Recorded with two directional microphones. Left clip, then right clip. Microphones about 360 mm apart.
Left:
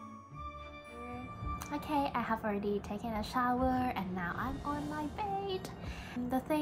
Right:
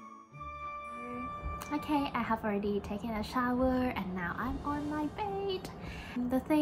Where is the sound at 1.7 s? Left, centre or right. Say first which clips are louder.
Right 1 dB; centre.